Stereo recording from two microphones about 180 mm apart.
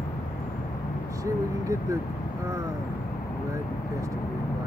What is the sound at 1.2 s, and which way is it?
Speech, 15° right (ahead or behind).